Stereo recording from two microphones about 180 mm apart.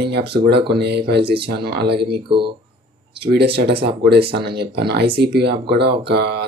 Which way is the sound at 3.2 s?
65° right (ahead or behind).